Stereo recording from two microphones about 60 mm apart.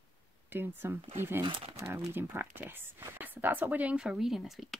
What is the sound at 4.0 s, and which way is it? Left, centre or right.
Speech, centre.